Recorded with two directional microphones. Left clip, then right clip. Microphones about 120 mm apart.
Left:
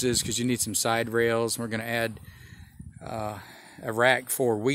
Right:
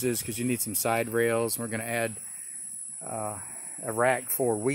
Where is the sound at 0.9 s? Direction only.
20° left (ahead or behind).